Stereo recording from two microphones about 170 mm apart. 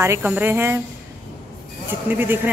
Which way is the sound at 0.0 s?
15° right (ahead or behind).